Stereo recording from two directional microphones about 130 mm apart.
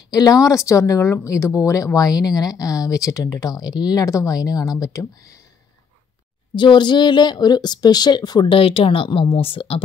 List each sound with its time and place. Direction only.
0.1 s speech: 30° left (ahead or behind)
6.5 s speech: 35° left (ahead or behind)